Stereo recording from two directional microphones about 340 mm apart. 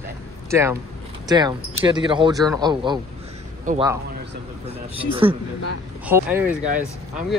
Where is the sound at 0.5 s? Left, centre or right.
Centre.